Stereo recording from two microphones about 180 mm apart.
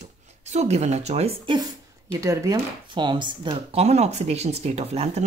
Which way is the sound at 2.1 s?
15° right (ahead or behind).